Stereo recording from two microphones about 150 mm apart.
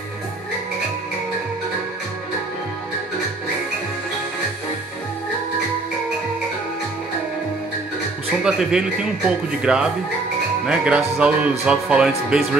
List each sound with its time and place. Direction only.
8.5 s speech: 5° right (ahead or behind)